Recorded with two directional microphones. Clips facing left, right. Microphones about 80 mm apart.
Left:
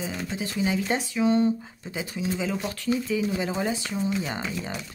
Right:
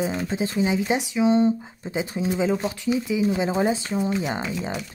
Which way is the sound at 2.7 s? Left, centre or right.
Centre.